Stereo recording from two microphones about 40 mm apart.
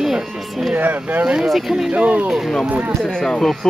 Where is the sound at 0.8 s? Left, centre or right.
Right.